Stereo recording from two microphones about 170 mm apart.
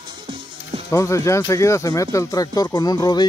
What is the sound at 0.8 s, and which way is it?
Speech, 15° left (ahead or behind).